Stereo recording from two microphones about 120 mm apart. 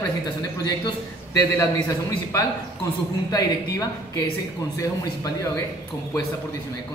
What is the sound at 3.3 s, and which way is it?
Speech, 30° left (ahead or behind).